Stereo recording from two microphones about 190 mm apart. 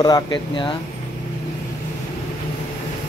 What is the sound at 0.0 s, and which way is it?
Speech, 20° left (ahead or behind).